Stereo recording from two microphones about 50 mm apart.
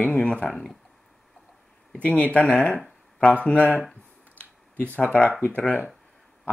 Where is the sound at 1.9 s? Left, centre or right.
Left.